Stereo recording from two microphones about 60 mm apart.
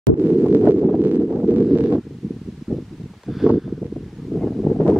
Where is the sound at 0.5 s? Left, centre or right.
Right.